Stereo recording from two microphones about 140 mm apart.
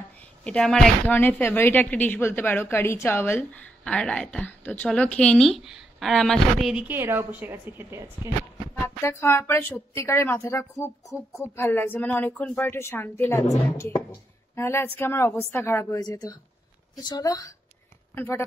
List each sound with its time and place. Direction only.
0.4 s speech: 5° left (ahead or behind); by 8.3 s 20° right (ahead or behind)
8.8 s speech: 20° left (ahead or behind)
14.5 s a woman's voice: 15° left (ahead or behind)